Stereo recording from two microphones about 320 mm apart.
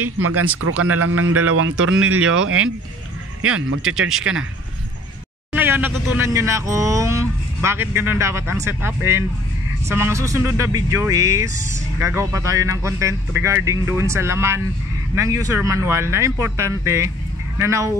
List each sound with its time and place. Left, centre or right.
0.2 s speech: right
5.5 s speech: centre